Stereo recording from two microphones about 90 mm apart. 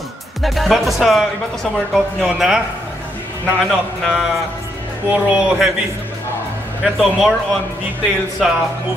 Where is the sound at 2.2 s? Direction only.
10° right (ahead or behind).